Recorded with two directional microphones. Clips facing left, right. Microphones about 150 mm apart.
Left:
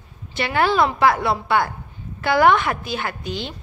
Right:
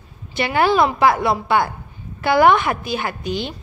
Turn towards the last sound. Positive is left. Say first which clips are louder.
# right 4 dB
turn(degrees=-10)  # may be behind; listen again after turning